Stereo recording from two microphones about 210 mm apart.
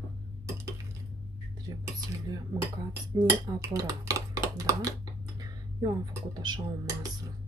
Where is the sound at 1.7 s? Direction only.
20° right (ahead or behind).